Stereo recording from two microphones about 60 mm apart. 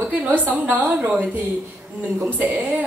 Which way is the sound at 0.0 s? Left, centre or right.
Right.